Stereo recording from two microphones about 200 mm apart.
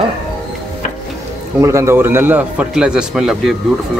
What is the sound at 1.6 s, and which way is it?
A man's voice, 15° right (ahead or behind).